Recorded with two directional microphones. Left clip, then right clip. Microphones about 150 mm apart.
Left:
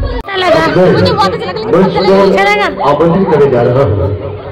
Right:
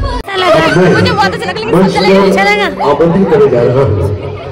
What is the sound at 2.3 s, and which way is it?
Speech, 25° right (ahead or behind).